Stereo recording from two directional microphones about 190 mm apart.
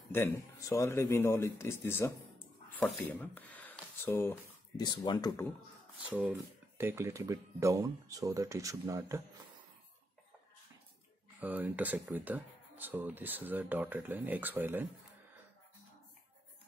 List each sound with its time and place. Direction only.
0.1 s speech: 15° left (ahead or behind)
6.0 s speech: 10° right (ahead or behind)
11.3 s speech: 10° right (ahead or behind)